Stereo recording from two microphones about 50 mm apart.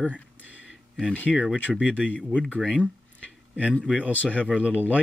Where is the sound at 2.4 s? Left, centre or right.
Centre.